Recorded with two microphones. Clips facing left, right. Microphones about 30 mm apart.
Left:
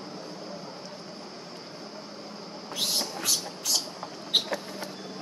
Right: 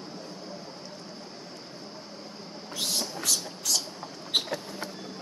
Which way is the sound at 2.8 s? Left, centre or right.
Centre.